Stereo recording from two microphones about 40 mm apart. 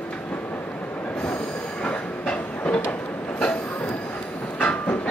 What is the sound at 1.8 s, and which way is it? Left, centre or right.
Train, left.